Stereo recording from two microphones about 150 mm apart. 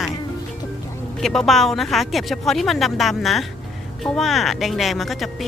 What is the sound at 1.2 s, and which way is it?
Speech, centre (ahead or behind).